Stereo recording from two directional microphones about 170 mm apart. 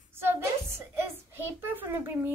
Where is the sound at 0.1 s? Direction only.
15° right (ahead or behind).